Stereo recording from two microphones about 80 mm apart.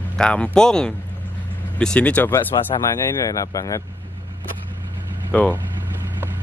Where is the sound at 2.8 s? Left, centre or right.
Left.